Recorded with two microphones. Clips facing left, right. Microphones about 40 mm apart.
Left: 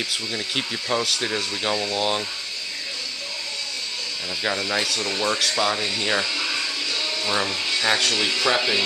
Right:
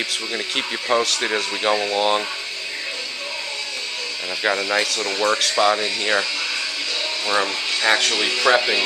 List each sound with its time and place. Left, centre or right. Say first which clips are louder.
0.3 s speech: right 2 dB; centre
4.4 s speech: right 4 dB; centre